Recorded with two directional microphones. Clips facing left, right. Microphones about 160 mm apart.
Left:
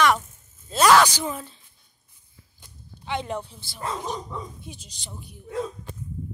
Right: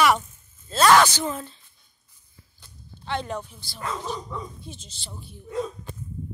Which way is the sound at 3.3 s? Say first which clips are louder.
Left 1 dB; 25° left (ahead or behind).